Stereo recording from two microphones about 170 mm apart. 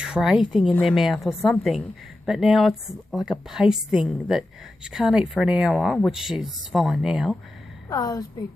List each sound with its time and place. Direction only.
0.0 s a woman's voice: 5° right (ahead or behind)
7.9 s a woman's voice: 20° left (ahead or behind)